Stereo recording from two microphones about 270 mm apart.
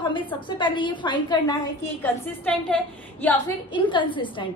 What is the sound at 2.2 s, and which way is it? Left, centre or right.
A woman's voice, centre.